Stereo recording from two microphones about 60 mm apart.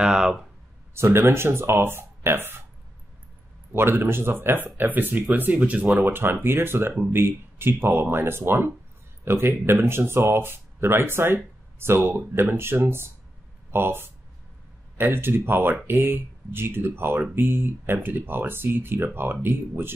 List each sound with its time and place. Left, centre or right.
0.0 s speech: centre
0.9 s speech: right
3.7 s speech: right